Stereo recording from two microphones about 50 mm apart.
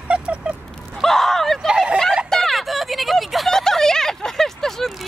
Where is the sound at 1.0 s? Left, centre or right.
Centre.